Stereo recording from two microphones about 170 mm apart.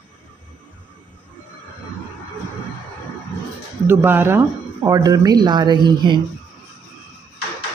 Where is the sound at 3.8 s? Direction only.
15° right (ahead or behind).